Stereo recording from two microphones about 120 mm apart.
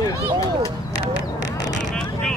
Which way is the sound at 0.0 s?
30° left (ahead or behind).